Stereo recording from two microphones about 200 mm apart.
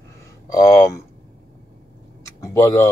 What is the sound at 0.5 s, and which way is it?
Speech, 15° left (ahead or behind).